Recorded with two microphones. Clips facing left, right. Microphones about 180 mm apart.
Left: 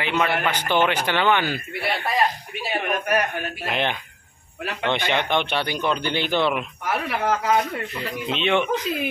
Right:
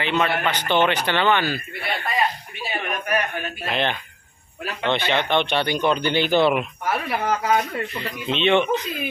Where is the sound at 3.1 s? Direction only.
10° left (ahead or behind); by 7.1 s 5° right (ahead or behind).